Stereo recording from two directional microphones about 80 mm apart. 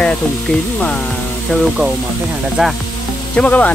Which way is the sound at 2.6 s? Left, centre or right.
Centre.